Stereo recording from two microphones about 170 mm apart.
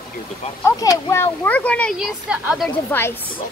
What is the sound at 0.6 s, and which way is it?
Speech, 20° left (ahead or behind).